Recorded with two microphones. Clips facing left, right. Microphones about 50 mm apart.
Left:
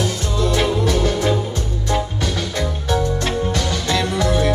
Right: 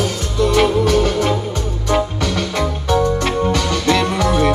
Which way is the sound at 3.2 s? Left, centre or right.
Right.